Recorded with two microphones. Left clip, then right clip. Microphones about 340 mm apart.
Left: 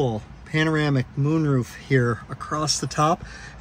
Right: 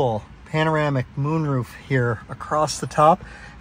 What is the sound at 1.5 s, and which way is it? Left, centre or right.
Speech, centre.